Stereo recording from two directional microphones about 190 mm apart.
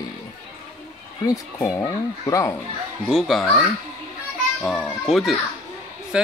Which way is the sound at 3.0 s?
Centre (ahead or behind).